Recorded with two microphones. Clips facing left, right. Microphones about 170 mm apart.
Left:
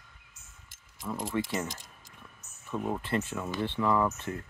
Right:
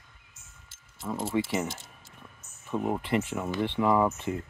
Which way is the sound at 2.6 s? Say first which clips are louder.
Right 3 dB; 20° right (ahead or behind).